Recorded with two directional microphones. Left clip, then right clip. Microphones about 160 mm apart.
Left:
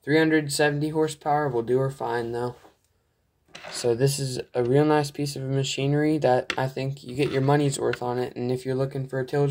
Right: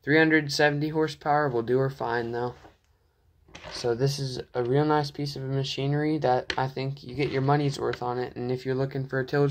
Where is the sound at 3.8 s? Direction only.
30° left (ahead or behind).